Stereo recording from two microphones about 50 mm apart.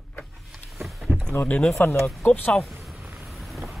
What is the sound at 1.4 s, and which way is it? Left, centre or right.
Speech, centre.